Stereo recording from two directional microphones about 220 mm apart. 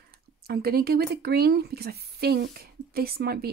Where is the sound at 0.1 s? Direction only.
45° right (ahead or behind).